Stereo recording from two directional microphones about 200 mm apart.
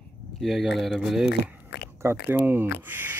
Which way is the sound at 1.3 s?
55° left (ahead or behind).